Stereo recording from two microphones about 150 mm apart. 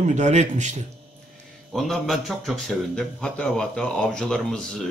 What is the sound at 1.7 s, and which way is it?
A man's voice, centre (ahead or behind).